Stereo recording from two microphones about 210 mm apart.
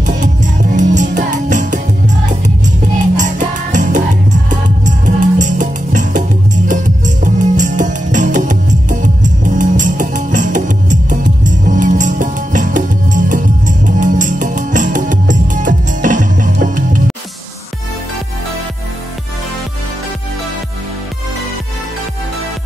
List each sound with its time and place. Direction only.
0.0 s music: 35° right (ahead or behind)